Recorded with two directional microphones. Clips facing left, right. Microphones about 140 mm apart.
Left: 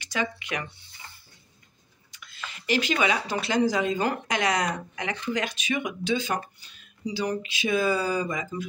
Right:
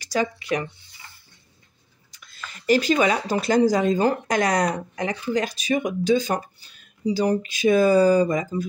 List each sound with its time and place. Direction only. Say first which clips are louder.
0.0 s speech: right 6 dB; 40° right (ahead or behind)
2.0 s speech: even; 40° right (ahead or behind)